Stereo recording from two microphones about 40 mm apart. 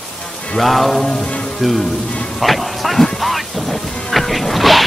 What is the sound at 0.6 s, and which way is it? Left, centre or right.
Rain on surface, centre.